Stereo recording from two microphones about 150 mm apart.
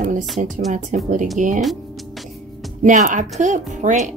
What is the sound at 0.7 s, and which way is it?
Speech, 50° right (ahead or behind).